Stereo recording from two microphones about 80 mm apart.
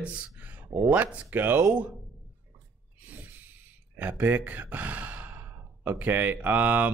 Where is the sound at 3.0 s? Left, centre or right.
Right.